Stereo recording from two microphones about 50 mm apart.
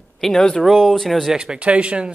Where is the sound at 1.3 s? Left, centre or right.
Centre.